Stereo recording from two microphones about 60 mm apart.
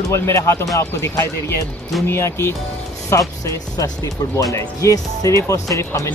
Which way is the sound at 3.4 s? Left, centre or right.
Left.